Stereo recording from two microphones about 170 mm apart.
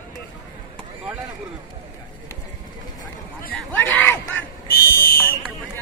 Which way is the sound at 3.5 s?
10° left (ahead or behind).